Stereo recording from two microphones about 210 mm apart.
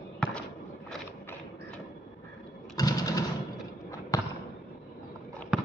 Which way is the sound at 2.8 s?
15° left (ahead or behind).